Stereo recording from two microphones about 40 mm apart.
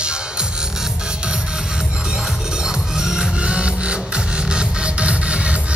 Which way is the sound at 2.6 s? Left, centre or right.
Centre.